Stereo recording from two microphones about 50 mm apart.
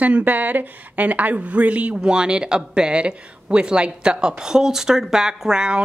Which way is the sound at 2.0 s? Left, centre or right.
Centre.